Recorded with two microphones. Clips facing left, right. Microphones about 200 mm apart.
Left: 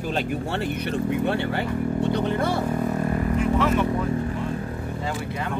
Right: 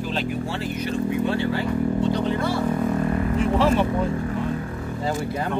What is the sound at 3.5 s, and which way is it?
Speech, 30° right (ahead or behind).